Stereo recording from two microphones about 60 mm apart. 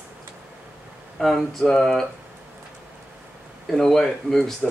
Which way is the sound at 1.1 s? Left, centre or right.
Centre.